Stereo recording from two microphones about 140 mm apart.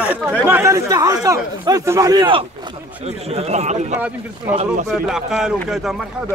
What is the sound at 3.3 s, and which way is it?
Speech, 50° right (ahead or behind).